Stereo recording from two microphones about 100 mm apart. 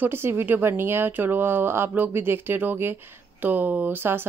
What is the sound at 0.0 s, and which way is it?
Speech, 25° right (ahead or behind).